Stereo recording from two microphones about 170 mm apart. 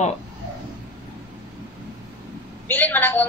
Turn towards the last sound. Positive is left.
turn(degrees=10)  # may be behind; listen again after turning